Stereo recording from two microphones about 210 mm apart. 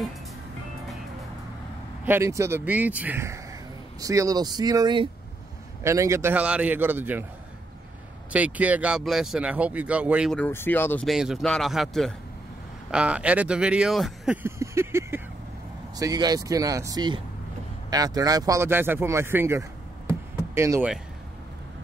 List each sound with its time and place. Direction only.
2.0 s speech: 10° right (ahead or behind)
8.3 s speech: 5° right (ahead or behind)
10.4 s speech: 10° left (ahead or behind); by 19.6 s 10° right (ahead or behind)
20.1 s a sound: 15° right (ahead or behind)